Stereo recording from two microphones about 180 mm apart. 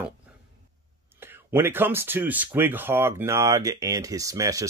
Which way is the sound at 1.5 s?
10° right (ahead or behind).